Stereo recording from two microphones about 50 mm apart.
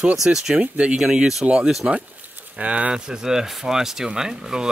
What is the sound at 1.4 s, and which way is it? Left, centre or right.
Speech, right.